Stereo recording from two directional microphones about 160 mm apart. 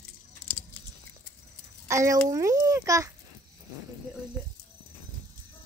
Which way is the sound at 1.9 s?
20° right (ahead or behind).